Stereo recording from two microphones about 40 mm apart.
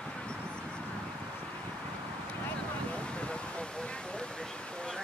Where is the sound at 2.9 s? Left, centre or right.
Left.